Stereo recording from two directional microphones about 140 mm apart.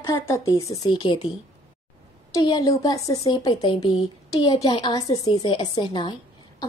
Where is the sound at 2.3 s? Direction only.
25° left (ahead or behind).